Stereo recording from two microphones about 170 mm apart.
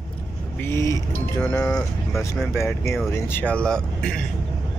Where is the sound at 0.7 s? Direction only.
15° left (ahead or behind).